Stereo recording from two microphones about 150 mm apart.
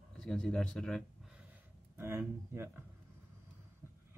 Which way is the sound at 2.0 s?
15° right (ahead or behind).